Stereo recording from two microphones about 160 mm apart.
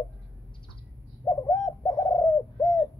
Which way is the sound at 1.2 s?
20° left (ahead or behind).